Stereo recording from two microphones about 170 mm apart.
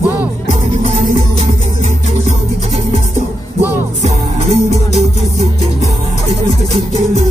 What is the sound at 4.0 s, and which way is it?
Music, 40° right (ahead or behind).